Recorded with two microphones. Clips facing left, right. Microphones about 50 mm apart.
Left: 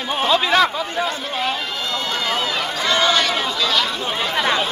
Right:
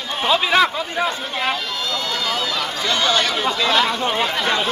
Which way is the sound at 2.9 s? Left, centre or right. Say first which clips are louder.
Left 2 dB; centre.